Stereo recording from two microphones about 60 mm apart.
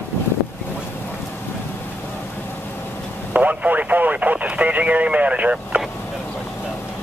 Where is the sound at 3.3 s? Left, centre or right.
Right.